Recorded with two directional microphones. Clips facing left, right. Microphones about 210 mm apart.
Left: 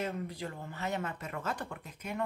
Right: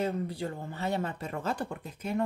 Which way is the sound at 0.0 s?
30° right (ahead or behind).